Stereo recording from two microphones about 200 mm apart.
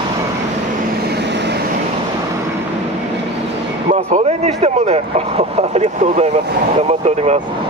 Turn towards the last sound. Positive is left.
turn(degrees=-30)  # may be behind; listen again after turning